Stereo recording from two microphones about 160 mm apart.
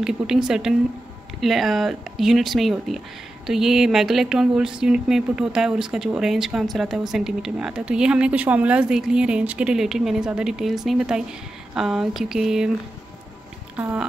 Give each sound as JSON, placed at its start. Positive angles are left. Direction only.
{"t": 0.0, "sound": "speech", "side_deg": -5}
{"t": 13.7, "sound": "speech", "side_deg": -5}